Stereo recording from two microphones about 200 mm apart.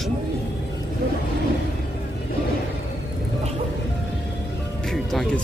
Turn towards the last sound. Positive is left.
turn(degrees=5)  # may be behind; listen again after turning